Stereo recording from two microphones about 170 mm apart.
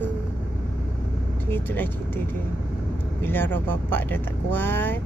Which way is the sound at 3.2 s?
10° left (ahead or behind).